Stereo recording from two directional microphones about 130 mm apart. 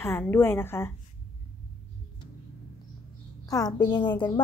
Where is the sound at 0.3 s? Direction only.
15° left (ahead or behind).